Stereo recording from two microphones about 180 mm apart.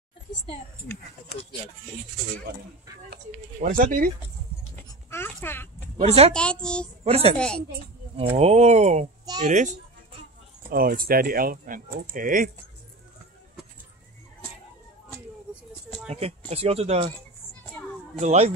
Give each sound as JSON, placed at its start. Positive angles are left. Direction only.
{"t": 3.6, "sound": "speech", "side_deg": -45}
{"t": 5.1, "sound": "speech", "side_deg": 10}
{"t": 5.9, "sound": "speech", "side_deg": -35}
{"t": 6.3, "sound": "a child's voice", "side_deg": 5}
{"t": 7.1, "sound": "speech", "side_deg": -35}
{"t": 7.3, "sound": "a child's voice", "side_deg": 5}
{"t": 8.2, "sound": "speech", "side_deg": -35}
{"t": 16.1, "sound": "speech", "side_deg": -35}
{"t": 18.2, "sound": "speech", "side_deg": -40}